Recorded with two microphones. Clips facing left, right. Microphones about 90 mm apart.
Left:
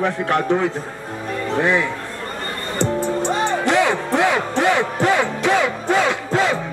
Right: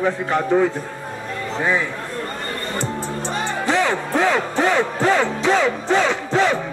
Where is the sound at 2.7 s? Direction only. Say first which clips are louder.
Left 8 dB; 60° left (ahead or behind).